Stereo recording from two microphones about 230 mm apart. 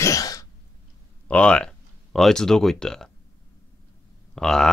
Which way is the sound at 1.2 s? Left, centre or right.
Centre.